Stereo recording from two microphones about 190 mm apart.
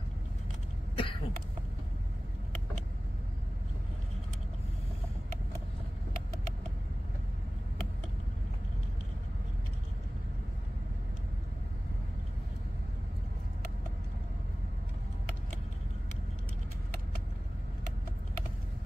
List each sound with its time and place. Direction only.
0.9 s cough: 25° left (ahead or behind)